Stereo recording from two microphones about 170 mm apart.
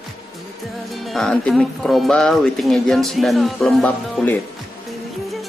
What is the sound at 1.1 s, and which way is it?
Speech, 5° left (ahead or behind).